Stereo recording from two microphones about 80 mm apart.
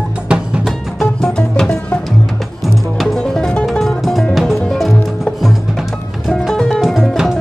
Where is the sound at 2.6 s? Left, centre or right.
Centre.